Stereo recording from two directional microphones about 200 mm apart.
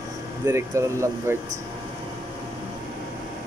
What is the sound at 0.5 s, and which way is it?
Speech, 15° right (ahead or behind).